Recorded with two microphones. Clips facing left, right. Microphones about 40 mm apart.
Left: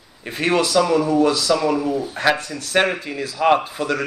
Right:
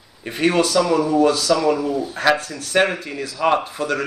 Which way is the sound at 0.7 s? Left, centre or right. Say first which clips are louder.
Even; centre.